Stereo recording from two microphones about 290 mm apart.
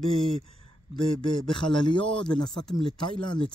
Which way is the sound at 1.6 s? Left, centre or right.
Centre.